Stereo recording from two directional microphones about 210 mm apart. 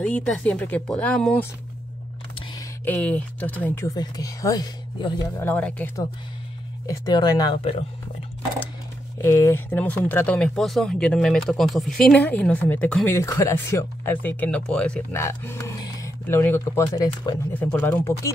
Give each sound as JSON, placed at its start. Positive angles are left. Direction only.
{"t": 0.0, "sound": "speech", "side_deg": 5}
{"t": 2.5, "sound": "speech", "side_deg": 10}
{"t": 6.9, "sound": "speech", "side_deg": 20}
{"t": 9.2, "sound": "speech", "side_deg": 10}